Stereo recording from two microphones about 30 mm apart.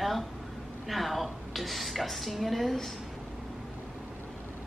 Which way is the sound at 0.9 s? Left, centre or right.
Centre.